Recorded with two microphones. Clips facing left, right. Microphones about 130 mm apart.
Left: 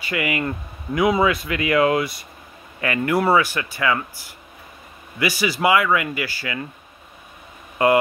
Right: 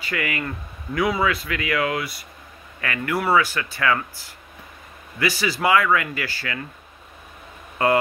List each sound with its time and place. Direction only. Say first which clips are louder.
0.1 s speech: left 4 dB; 20° left (ahead or behind)
5.2 s speech: left 2 dB; 15° left (ahead or behind)
7.8 s speech: left 3 dB; 15° left (ahead or behind)